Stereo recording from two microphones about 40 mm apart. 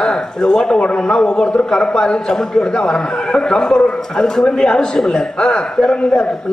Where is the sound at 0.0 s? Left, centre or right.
Centre.